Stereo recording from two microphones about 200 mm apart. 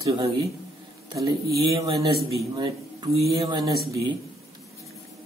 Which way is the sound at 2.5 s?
20° right (ahead or behind).